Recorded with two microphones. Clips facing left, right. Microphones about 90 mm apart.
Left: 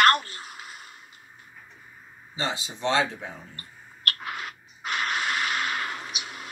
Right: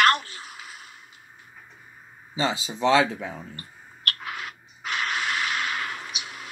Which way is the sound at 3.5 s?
Centre (ahead or behind).